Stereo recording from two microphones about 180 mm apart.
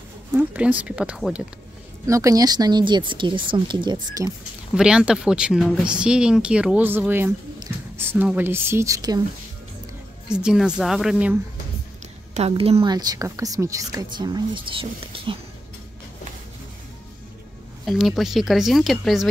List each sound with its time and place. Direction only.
0.3 s speech: 10° right (ahead or behind)
2.0 s speech: 15° right (ahead or behind)
4.7 s speech: 5° right (ahead or behind); by 9.2 s 20° right (ahead or behind)
10.2 s speech: 5° right (ahead or behind)
12.4 s a woman's voice: 35° right (ahead or behind)
12.9 s speech: 20° right (ahead or behind)
17.8 s speech: centre (ahead or behind)